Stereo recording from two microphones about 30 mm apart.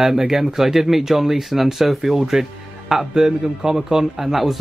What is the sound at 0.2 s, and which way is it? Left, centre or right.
A man's voice, centre.